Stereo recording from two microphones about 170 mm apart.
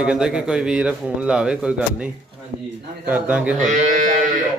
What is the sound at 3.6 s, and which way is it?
Speech, 45° right (ahead or behind).